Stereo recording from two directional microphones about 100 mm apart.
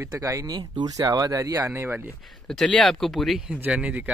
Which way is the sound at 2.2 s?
5° left (ahead or behind).